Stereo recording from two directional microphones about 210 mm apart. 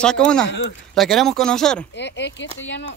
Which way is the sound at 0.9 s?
Centre (ahead or behind).